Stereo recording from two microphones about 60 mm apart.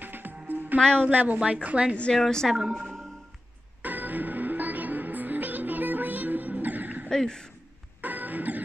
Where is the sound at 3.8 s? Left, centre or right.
Right.